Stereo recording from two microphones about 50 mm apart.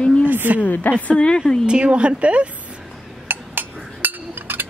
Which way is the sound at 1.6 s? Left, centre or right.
Right.